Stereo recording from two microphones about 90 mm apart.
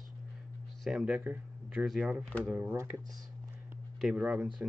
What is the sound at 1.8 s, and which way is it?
Speech, centre (ahead or behind).